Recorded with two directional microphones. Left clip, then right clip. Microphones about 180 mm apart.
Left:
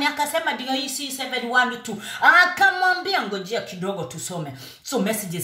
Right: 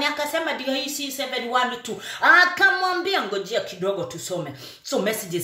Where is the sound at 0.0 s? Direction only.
10° right (ahead or behind).